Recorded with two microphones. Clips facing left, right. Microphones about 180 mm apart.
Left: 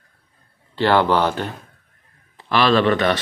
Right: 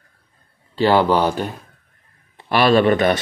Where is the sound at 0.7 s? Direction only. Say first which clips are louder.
Right 1 dB; 15° right (ahead or behind).